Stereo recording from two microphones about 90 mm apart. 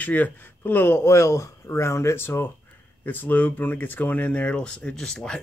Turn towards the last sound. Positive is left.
turn(degrees=10)  # may be behind; listen again after turning